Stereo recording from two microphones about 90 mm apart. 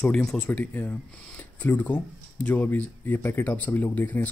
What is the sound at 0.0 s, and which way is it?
Speech, 10° left (ahead or behind).